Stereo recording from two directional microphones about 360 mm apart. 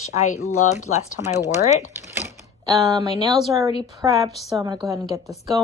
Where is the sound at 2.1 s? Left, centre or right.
Centre.